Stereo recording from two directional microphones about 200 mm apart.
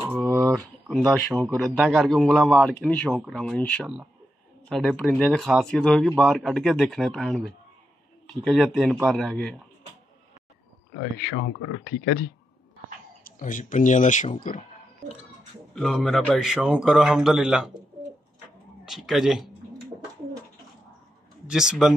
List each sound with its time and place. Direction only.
0.0 s a sound: 10° right (ahead or behind)
0.8 s a man's voice: centre (ahead or behind)
11.0 s speech: 55° left (ahead or behind)
13.4 s speech: 40° left (ahead or behind)
15.7 s a man's voice: centre (ahead or behind)
18.9 s a man's voice: centre (ahead or behind)
21.5 s a man's voice: 5° right (ahead or behind)